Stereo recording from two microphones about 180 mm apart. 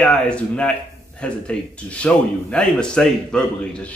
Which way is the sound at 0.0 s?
5° left (ahead or behind).